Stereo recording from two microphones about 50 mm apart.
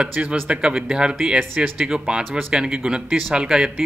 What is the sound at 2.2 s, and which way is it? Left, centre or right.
Speech, centre.